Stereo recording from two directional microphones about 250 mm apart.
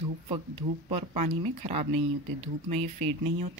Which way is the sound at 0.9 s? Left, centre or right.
Right.